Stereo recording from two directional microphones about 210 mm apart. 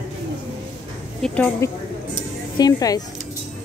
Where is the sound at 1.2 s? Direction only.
5° left (ahead or behind).